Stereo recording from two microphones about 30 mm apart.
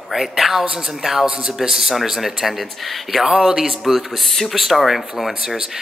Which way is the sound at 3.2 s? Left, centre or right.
Centre.